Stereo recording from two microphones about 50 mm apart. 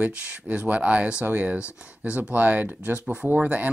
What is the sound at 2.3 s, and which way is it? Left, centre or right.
Speech, right.